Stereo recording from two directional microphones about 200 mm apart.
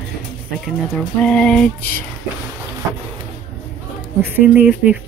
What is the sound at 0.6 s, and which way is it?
Speech, 5° left (ahead or behind).